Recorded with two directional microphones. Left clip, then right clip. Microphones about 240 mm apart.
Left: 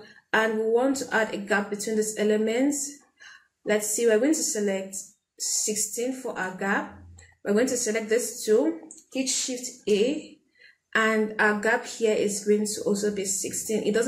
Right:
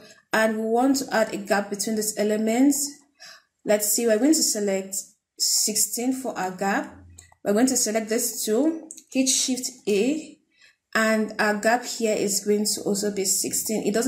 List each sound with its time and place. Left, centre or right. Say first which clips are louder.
0.3 s speech: right 1 dB; right
3.6 s speech: right 2 dB; right